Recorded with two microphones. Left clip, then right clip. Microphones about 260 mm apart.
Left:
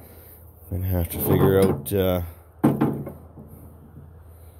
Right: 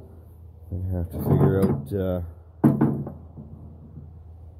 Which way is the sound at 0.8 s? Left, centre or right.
Left.